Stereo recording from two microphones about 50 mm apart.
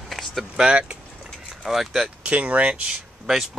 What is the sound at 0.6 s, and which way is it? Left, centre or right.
Speech, right.